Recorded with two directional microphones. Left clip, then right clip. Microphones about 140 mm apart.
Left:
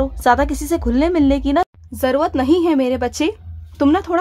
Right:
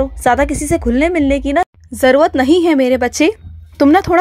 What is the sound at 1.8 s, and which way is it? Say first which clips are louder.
A woman's voice: right 7 dB; 30° right (ahead or behind).